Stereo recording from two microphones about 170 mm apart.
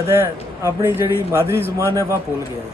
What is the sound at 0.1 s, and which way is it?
Speech, 15° right (ahead or behind).